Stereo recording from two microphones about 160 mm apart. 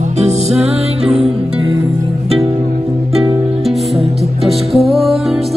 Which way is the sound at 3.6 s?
Centre (ahead or behind).